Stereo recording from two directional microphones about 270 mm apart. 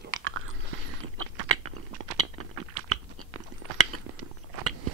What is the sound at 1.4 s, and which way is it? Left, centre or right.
Crunch, right.